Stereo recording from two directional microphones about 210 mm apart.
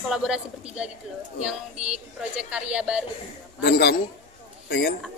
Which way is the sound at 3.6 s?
50° left (ahead or behind).